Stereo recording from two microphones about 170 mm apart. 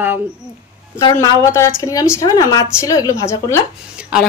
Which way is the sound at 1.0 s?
25° left (ahead or behind).